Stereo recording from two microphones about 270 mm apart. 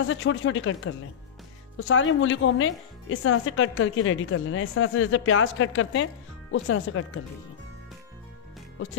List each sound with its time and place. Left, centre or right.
0.0 s speech: left